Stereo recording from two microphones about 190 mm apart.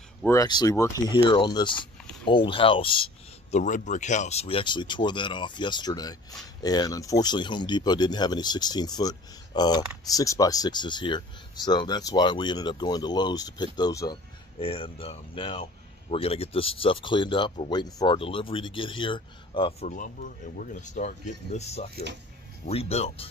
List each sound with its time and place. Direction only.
0.3 s speech: 20° left (ahead or behind)
3.5 s speech: 40° left (ahead or behind)
19.9 s speech: 45° left (ahead or behind)